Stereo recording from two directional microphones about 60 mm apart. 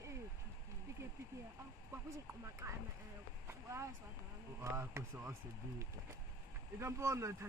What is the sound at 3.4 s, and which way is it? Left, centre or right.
Speech, right.